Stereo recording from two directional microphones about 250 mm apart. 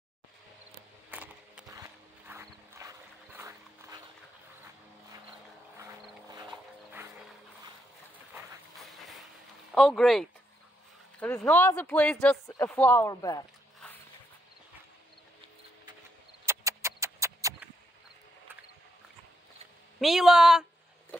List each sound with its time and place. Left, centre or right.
1.1 s clip-clop: centre
5.8 s vehicle: centre
6.5 s music: centre
9.8 s speech: centre
16.4 s a sound: centre
20.0 s speech: centre